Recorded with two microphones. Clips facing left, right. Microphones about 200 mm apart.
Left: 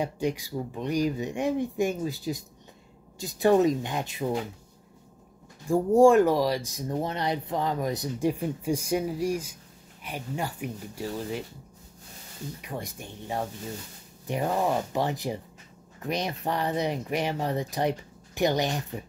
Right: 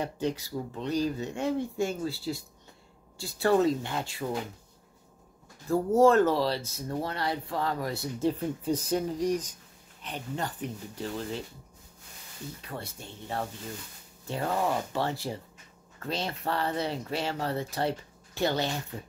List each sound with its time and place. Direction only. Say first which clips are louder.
0.0 s speech: left 2 dB; 15° left (ahead or behind)
5.7 s speech: left 3 dB; 15° left (ahead or behind)
12.6 s speech: left 4 dB; 15° left (ahead or behind)